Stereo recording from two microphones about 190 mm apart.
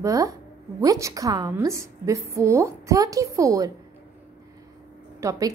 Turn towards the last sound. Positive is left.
turn(degrees=-20)  # may be behind; listen again after turning